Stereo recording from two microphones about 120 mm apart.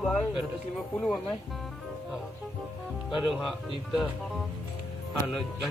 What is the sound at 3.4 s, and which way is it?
A man's voice, centre (ahead or behind).